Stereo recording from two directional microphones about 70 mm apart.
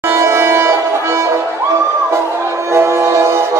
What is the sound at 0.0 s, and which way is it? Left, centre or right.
Music, right.